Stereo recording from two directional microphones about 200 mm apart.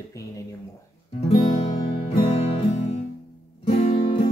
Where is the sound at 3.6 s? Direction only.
30° left (ahead or behind).